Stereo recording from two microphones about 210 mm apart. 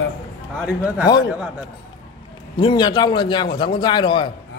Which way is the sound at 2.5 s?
20° left (ahead or behind).